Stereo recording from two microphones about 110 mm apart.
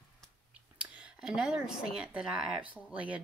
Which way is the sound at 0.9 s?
5° right (ahead or behind).